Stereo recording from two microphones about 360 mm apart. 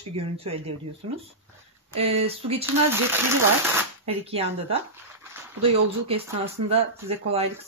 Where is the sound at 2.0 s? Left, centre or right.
Centre.